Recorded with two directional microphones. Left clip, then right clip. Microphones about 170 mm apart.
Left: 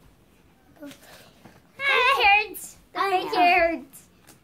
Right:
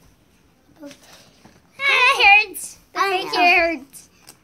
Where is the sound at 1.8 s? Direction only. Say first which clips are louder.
Right 5 dB; 10° right (ahead or behind).